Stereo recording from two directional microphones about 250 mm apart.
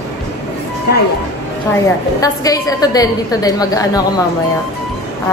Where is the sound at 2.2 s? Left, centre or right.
Centre.